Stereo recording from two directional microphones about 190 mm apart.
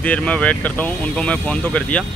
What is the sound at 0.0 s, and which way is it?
Speech, 5° left (ahead or behind).